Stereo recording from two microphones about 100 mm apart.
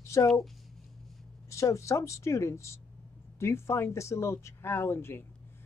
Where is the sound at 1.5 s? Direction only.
30° left (ahead or behind).